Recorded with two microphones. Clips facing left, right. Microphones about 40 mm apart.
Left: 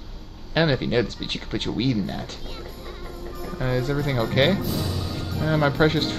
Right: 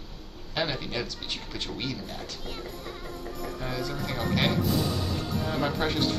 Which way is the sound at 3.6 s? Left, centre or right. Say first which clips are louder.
Left 10 dB; left.